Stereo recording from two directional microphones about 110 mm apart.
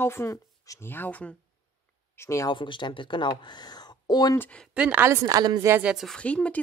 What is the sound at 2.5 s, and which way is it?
Speech, 45° left (ahead or behind).